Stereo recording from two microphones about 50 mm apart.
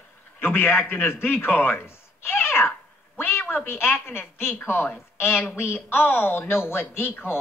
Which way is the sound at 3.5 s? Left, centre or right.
Left.